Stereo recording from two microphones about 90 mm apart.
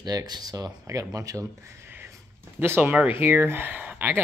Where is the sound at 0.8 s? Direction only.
35° right (ahead or behind).